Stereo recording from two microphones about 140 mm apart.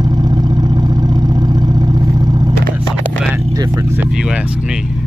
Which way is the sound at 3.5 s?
15° right (ahead or behind).